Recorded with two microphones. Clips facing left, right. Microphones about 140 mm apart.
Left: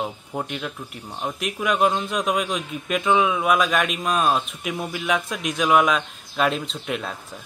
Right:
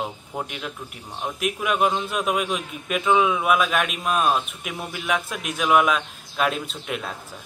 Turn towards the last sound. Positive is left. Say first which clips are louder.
# left 2 dB
turn(degrees=0)  # may be behind; listen again after turning